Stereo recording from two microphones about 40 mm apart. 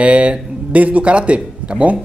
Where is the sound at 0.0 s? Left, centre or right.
Right.